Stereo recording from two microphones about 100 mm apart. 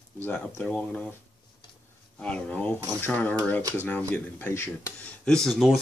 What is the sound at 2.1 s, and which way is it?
Speech, 10° left (ahead or behind).